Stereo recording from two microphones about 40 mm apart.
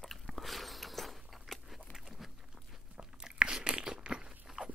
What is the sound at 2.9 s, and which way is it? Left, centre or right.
Crunch, centre.